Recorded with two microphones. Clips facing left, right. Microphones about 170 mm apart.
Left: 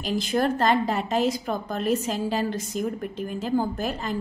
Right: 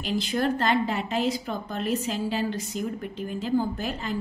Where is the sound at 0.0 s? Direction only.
45° left (ahead or behind).